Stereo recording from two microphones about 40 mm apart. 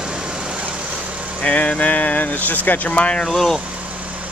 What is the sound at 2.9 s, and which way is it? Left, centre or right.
Speech, left.